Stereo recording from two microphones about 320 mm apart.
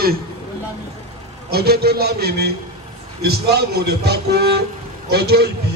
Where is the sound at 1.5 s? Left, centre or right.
Right.